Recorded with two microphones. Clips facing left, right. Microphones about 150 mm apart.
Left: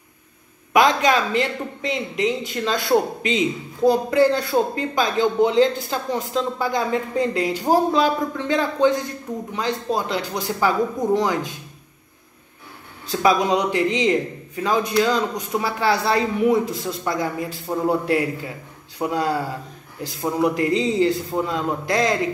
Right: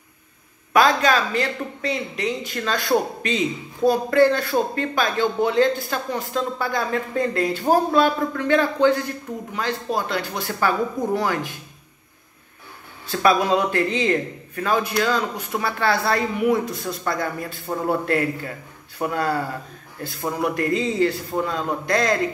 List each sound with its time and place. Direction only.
0.7 s a woman's voice: 20° left (ahead or behind)
13.1 s a woman's voice: 15° left (ahead or behind)